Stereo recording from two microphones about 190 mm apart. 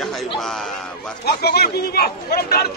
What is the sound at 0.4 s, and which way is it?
Speech, centre (ahead or behind).